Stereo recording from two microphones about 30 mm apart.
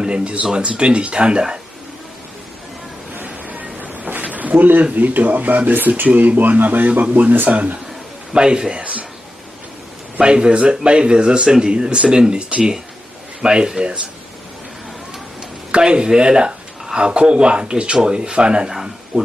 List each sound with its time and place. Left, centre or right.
0.0 s speech: right
3.4 s vehicle: right
4.1 s a sound: right
4.9 s speech: right
7.0 s speech: right
7.4 s speech: right
8.3 s speech: right
10.2 s speech: right
15.7 s speech: right
18.7 s speech: centre